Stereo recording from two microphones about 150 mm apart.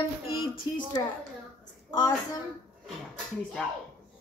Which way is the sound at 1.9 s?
25° left (ahead or behind).